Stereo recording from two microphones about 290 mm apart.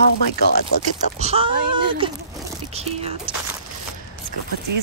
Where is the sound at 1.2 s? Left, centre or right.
Centre.